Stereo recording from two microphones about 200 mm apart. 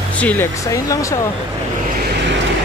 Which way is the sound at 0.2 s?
10° left (ahead or behind).